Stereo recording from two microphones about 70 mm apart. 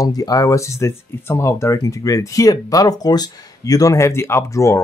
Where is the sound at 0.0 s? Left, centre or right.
Left.